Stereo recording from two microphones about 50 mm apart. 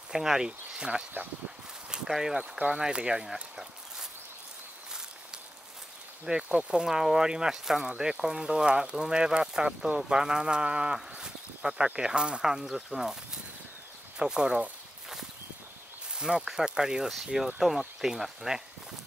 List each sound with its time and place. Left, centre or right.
0.1 s speech: centre
3.5 s a sound: centre
6.2 s speech: centre
11.0 s a sound: centre
11.9 s speech: centre
16.2 s speech: centre